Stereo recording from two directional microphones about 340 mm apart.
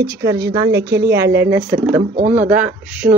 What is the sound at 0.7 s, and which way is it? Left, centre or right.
Speech, right.